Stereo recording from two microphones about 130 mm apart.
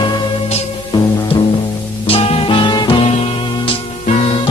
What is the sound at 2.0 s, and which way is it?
Music, 45° left (ahead or behind).